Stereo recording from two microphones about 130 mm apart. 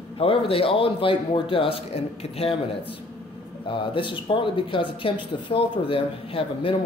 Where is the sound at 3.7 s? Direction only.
40° left (ahead or behind).